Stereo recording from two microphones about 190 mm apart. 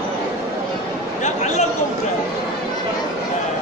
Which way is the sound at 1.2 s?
40° left (ahead or behind).